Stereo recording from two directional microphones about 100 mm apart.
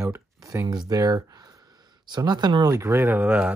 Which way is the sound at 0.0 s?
30° right (ahead or behind).